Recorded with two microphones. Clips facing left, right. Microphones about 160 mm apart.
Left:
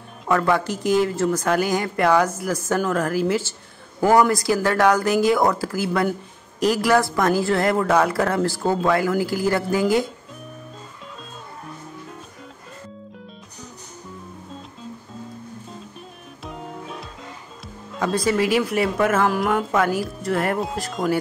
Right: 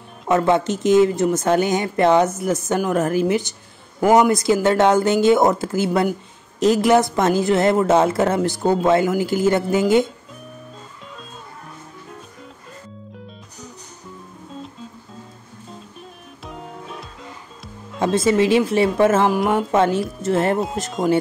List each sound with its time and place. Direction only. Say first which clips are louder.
0.3 s speech: right 3 dB; 20° right (ahead or behind)
16.4 s music: left 1 dB; centre (ahead or behind)
17.9 s speech: right 4 dB; 25° right (ahead or behind)
20.5 s speech: right 3 dB; centre (ahead or behind)